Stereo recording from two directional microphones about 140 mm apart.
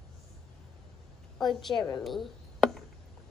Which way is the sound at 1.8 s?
Centre (ahead or behind).